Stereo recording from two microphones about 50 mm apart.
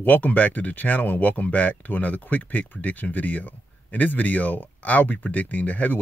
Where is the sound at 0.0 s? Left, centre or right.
Left.